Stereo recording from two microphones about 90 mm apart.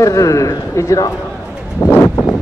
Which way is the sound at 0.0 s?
35° left (ahead or behind).